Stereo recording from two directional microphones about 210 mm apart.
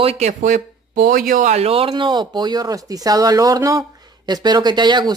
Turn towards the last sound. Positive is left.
turn(degrees=-20)  # may be behind; listen again after turning